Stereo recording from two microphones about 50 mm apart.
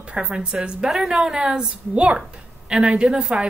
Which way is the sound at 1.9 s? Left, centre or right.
Right.